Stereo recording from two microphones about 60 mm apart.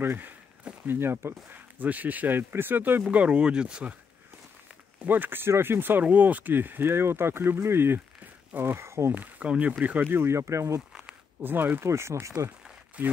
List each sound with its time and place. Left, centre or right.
0.0 s speech: right
3.1 s speech: right
4.9 s speech: right
9.1 s speech: right
10.2 s speech: right
11.4 s speech: right
11.9 s speech: right
13.0 s speech: right